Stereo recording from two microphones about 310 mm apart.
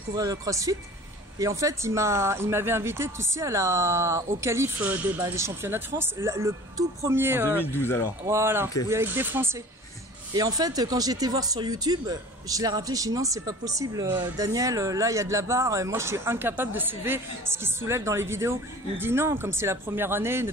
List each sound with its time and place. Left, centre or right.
0.1 s speech: centre
7.6 s speech: centre
8.3 s speech: centre